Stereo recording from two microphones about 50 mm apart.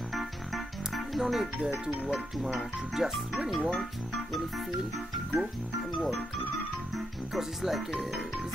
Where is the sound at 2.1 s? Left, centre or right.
Centre.